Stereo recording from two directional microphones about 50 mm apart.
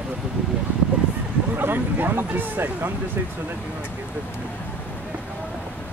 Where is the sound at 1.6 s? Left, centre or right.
Right.